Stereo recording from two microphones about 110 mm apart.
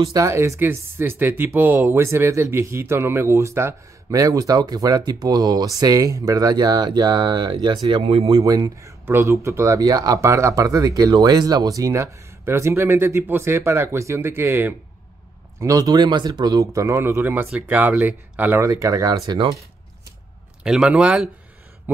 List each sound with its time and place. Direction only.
0.1 s speech: 25° right (ahead or behind)
8.0 s speech: 65° right (ahead or behind)
8.3 s speech: 35° right (ahead or behind)
15.6 s speech: 35° right (ahead or behind); by 18.7 s 15° right (ahead or behind)
18.7 s speech: 30° right (ahead or behind)
20.6 s speech: 5° right (ahead or behind)
21.9 s a sound: 15° right (ahead or behind)